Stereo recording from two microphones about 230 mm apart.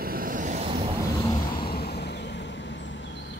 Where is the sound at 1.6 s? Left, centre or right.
Left.